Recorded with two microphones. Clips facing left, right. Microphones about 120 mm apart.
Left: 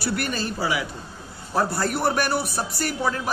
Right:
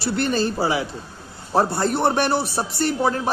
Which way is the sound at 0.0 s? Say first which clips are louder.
Right 5 dB; 25° right (ahead or behind).